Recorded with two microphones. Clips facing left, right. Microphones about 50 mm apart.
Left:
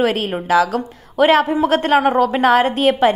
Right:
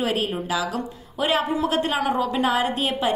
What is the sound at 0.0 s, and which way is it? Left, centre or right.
A woman's voice, left.